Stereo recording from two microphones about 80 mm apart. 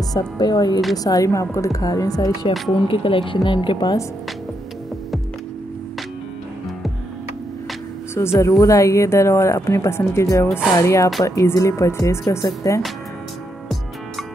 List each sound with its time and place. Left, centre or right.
0.1 s speech: left
0.9 s a woman's voice: left
2.7 s a woman's voice: left
8.1 s speech: left